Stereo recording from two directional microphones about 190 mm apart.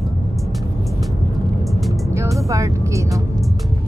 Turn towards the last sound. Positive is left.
turn(degrees=-15)  # may be behind; listen again after turning